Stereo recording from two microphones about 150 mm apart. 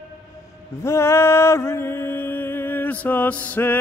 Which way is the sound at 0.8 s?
20° left (ahead or behind).